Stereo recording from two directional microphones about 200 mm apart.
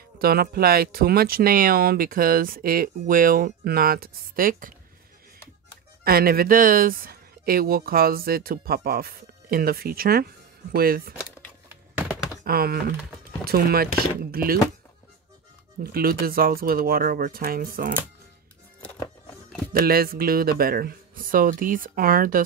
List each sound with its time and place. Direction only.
0.2 s speech: 50° right (ahead or behind)
6.0 s speech: 50° right (ahead or behind)
11.7 s a sound: 5° right (ahead or behind)
12.4 s speech: 50° right (ahead or behind)
15.8 s speech: 50° right (ahead or behind)
19.7 s speech: 50° right (ahead or behind)